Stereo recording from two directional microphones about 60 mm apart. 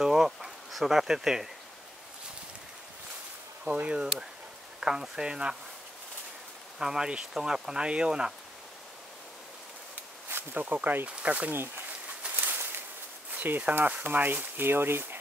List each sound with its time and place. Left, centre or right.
0.0 s speech: centre
3.7 s speech: centre
6.8 s speech: centre
10.3 s speech: right
12.2 s a sound: right
12.5 s a sound: right
13.3 s speech: right